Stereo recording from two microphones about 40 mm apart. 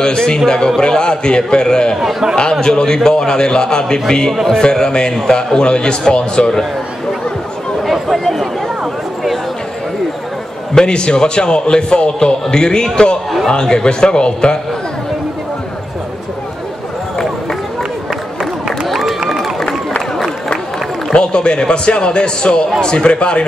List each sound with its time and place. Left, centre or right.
0.0 s a man's voice: centre
2.0 s speech: centre
2.6 s a man's voice: centre
7.8 s chatter: centre
10.7 s a man's voice: left
18.4 s a sound: centre
18.9 s run: centre
21.1 s a man's voice: left